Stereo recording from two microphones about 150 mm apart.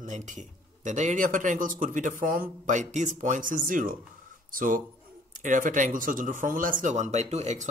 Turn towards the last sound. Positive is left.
turn(degrees=-50)  # may be behind; listen again after turning